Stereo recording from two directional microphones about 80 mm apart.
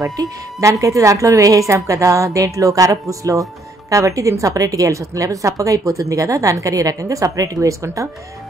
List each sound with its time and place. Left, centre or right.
0.0 s a woman's voice: right